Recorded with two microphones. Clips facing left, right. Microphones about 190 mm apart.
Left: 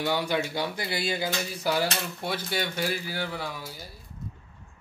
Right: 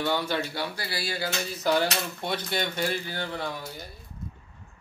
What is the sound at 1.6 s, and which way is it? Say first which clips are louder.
Speech: right 3 dB; 5° left (ahead or behind).